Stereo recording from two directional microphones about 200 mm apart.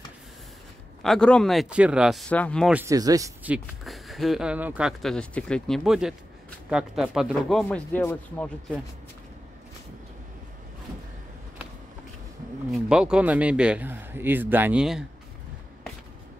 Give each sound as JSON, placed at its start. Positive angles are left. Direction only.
{"t": 1.0, "sound": "speech", "side_deg": 5}
{"t": 2.7, "sound": "a man's voice", "side_deg": -15}
{"t": 3.5, "sound": "speech", "side_deg": 0}
{"t": 7.6, "sound": "speech", "side_deg": 10}
{"t": 12.7, "sound": "a man's voice", "side_deg": -5}